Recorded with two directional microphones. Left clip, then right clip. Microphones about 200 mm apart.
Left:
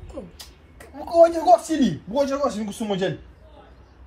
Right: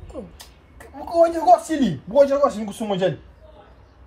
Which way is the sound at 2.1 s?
30° right (ahead or behind).